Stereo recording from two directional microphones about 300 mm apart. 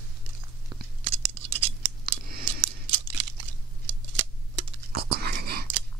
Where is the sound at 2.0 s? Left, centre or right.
Right.